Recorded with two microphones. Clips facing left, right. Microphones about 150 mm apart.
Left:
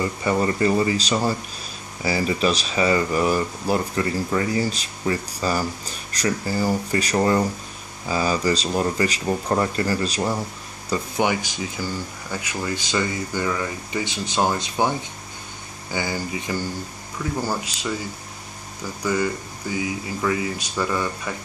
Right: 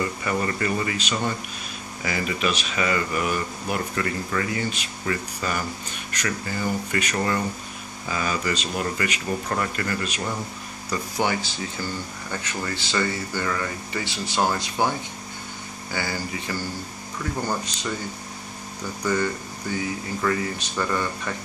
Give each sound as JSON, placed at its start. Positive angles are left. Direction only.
{"t": 0.2, "sound": "speech", "side_deg": 25}
{"t": 10.9, "sound": "speech", "side_deg": 15}
{"t": 19.7, "sound": "speech", "side_deg": 10}